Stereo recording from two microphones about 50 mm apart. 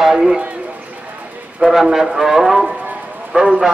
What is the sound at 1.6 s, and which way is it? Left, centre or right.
Speech, centre.